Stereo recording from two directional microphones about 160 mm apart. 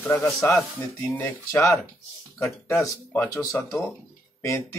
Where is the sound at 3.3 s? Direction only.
20° left (ahead or behind).